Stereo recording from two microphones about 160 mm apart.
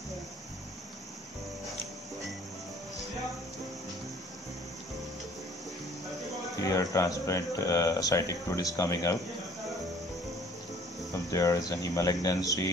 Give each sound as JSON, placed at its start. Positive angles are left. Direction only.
{"t": 6.6, "sound": "speech", "side_deg": 20}
{"t": 11.2, "sound": "speech", "side_deg": 20}